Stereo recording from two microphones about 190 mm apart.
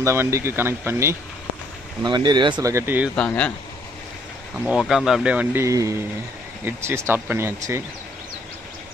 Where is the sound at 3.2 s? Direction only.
5° left (ahead or behind).